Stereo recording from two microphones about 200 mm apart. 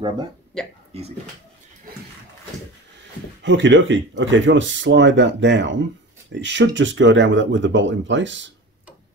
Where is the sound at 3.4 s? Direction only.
65° right (ahead or behind).